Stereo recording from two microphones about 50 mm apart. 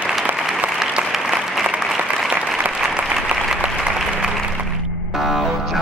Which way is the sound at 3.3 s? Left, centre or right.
Right.